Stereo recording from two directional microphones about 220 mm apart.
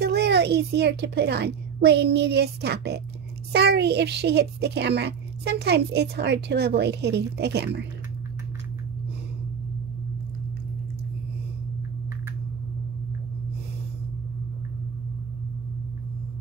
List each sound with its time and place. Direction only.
0.0 s a woman's voice: 50° right (ahead or behind)